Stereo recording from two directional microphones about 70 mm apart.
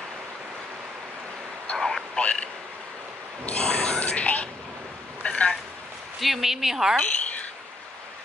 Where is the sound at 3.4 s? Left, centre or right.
Centre.